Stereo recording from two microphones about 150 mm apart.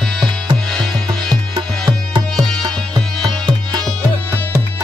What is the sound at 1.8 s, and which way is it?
Music, 25° right (ahead or behind).